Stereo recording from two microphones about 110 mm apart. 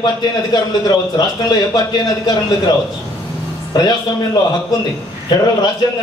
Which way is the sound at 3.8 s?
40° left (ahead or behind).